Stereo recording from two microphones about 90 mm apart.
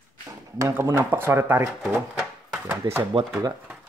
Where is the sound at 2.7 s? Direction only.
30° right (ahead or behind).